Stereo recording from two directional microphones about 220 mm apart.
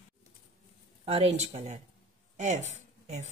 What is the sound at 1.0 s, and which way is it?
Speech, 25° right (ahead or behind).